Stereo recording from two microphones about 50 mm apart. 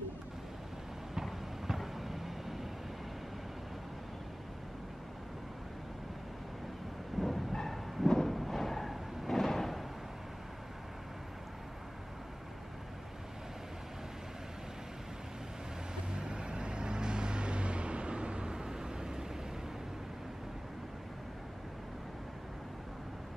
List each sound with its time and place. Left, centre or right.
1.1 s vehicle: centre
7.2 s a sound: centre
16.2 s vehicle: centre